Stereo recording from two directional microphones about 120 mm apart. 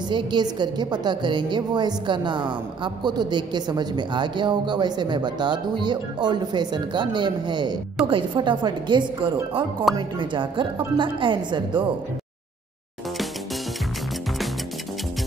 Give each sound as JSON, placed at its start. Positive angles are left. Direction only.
{"t": 0.1, "sound": "a woman's voice", "side_deg": -40}